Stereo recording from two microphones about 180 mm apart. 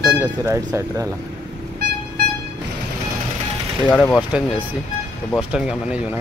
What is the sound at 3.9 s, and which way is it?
Speech, 5° left (ahead or behind).